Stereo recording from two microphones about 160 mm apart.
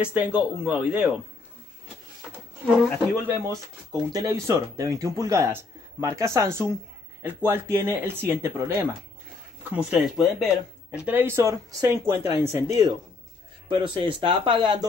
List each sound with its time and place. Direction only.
0.0 s speech: 10° right (ahead or behind)
3.3 s speech: 20° right (ahead or behind)
13.7 s speech: 30° right (ahead or behind)